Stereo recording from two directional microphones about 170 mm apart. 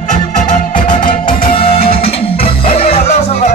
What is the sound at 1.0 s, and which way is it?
Music, 55° left (ahead or behind).